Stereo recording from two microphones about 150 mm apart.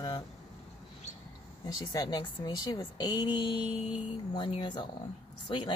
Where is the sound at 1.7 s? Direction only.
30° left (ahead or behind).